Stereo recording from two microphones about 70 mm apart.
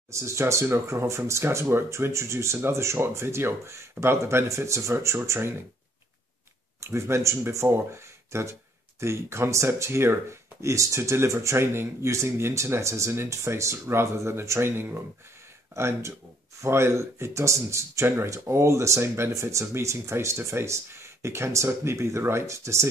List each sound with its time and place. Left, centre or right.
0.1 s speech: right
6.8 s speech: right